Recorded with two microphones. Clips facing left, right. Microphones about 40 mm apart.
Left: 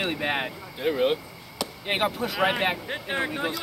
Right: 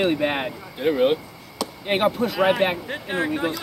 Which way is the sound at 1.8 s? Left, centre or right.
Centre.